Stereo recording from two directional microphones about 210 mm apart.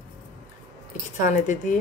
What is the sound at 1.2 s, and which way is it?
Speech, 40° left (ahead or behind).